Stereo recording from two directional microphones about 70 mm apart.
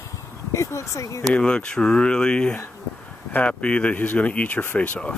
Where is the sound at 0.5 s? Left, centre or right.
Left.